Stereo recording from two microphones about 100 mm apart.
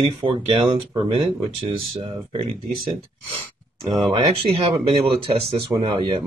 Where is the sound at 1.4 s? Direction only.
75° right (ahead or behind).